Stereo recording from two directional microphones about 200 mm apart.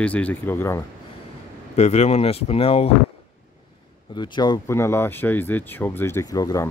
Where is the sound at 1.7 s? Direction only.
35° left (ahead or behind).